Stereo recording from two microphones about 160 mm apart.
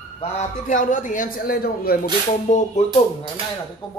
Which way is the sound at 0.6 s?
55° left (ahead or behind).